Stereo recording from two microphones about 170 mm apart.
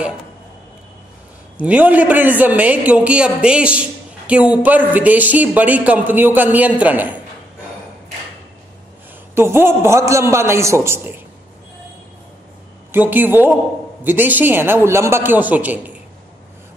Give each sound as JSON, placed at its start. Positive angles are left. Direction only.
{"t": 1.6, "sound": "speech", "side_deg": -10}
{"t": 9.3, "sound": "speech", "side_deg": -15}
{"t": 12.9, "sound": "speech", "side_deg": -10}